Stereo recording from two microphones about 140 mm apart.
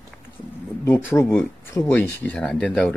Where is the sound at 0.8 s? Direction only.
15° left (ahead or behind).